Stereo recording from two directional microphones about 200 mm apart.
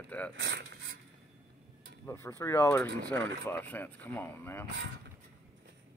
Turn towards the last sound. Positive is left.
turn(degrees=10)  # may be behind; listen again after turning